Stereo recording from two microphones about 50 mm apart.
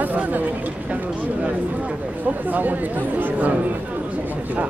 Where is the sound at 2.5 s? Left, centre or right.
Right.